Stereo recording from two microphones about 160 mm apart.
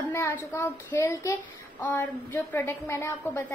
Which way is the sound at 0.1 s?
15° left (ahead or behind).